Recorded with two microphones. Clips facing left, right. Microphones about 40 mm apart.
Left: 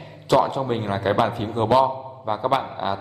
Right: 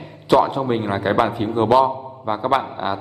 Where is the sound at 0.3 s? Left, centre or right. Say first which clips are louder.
Right 3 dB; centre.